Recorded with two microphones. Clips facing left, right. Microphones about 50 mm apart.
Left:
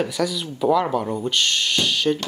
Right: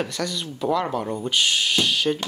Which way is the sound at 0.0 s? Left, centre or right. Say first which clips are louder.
Left 4 dB; centre.